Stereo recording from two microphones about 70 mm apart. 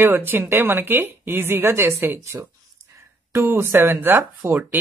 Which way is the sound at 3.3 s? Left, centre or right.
Right.